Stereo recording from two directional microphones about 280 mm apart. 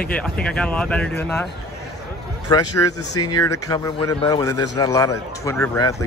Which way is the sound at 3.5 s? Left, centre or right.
Centre.